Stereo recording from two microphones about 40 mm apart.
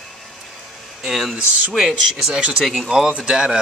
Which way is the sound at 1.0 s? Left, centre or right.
Centre.